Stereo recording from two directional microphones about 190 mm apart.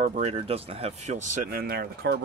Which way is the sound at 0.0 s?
40° right (ahead or behind).